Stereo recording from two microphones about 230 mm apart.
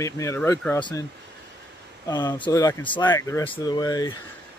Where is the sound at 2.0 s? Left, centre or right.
Centre.